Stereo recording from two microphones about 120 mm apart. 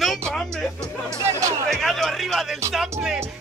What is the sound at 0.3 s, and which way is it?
Music, centre (ahead or behind).